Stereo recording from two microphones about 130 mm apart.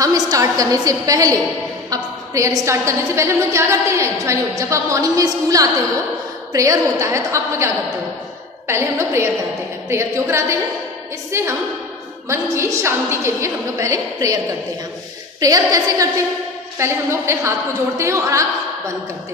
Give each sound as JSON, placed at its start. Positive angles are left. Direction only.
{"t": 0.0, "sound": "a woman's voice", "side_deg": -25}
{"t": 15.4, "sound": "a woman's voice", "side_deg": -25}